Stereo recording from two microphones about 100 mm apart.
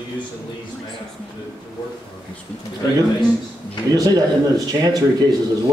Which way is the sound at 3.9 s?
40° right (ahead or behind).